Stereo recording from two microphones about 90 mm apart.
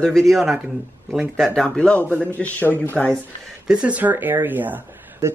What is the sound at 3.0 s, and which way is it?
Speech, 5° left (ahead or behind).